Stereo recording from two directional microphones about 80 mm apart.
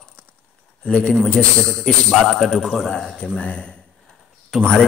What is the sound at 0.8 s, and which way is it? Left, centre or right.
A man's voice, centre.